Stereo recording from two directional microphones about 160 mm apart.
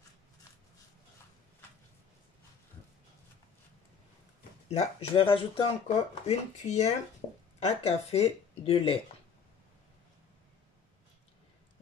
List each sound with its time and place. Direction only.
4.6 s speech: 35° left (ahead or behind)